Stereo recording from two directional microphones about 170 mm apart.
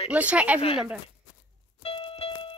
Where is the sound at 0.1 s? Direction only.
5° right (ahead or behind).